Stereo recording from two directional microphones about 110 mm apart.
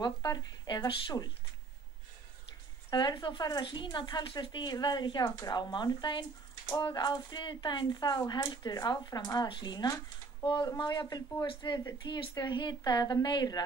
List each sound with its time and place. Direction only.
0.0 s speech: 35° left (ahead or behind)
2.9 s speech: 40° left (ahead or behind)